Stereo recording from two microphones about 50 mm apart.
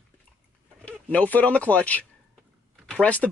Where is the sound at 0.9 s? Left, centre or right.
Left.